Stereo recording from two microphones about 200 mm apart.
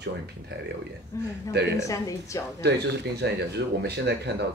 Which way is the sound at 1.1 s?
15° left (ahead or behind).